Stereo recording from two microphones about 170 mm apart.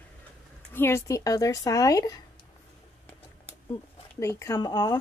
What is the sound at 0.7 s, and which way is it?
Speech, 15° left (ahead or behind).